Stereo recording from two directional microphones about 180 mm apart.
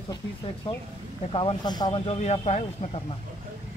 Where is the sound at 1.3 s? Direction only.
30° left (ahead or behind).